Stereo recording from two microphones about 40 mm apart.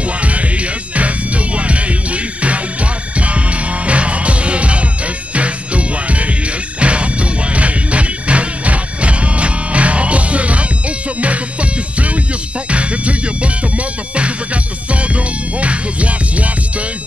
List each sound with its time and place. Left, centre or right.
0.2 s music: right
12.6 s music: right